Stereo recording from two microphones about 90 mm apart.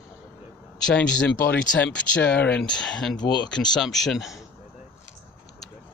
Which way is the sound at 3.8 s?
Centre (ahead or behind).